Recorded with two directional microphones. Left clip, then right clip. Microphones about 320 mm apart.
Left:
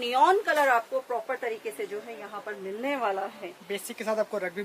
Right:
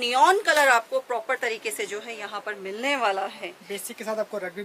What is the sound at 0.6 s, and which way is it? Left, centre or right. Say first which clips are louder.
A woman's voice: right 4 dB; centre.